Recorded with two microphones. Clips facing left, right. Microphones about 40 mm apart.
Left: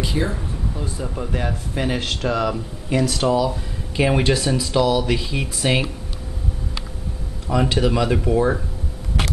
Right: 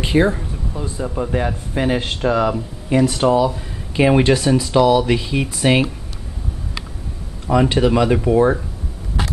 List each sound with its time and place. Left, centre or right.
0.0 s speech: right
0.9 s speech: centre
7.4 s speech: centre